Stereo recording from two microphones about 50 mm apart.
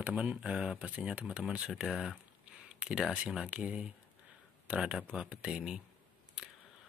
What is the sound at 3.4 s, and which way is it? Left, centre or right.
Speech, right.